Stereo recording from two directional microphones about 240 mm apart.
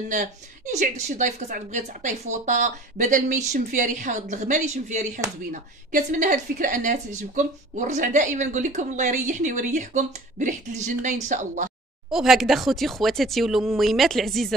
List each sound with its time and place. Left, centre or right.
0.1 s a woman's voice: right
12.1 s speech: centre